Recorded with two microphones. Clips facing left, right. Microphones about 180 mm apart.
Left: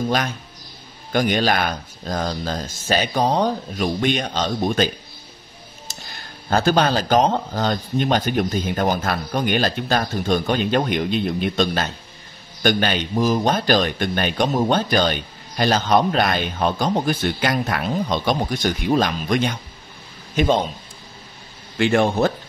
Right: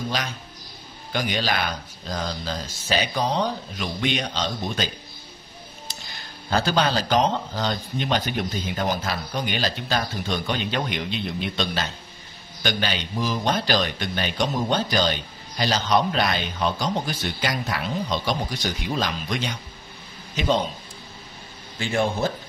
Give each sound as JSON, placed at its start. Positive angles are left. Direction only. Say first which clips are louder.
{"t": 1.1, "sound": "speech", "louder": "left 6 dB", "side_deg": 50}
{"t": 5.9, "sound": "music", "louder": "left 3 dB", "side_deg": 45}
{"t": 6.5, "sound": "speech", "louder": "left 4 dB", "side_deg": 50}
{"t": 21.7, "sound": "speech", "louder": "left 7 dB", "side_deg": 70}